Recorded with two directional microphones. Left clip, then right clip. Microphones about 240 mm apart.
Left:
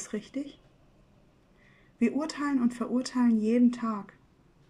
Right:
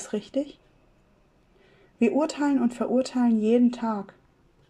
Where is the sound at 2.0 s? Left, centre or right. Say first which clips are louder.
Right 6 dB; centre.